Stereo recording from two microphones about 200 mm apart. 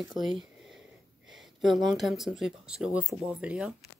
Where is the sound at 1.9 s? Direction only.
Centre (ahead or behind).